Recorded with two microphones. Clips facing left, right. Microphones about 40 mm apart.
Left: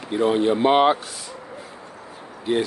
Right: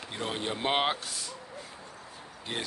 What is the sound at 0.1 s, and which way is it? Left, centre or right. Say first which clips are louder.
Speech: left 15 dB; centre.